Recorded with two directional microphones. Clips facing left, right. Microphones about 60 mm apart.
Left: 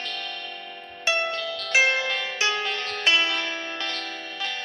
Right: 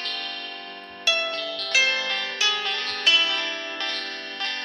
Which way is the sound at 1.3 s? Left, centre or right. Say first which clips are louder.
Left 1 dB; centre.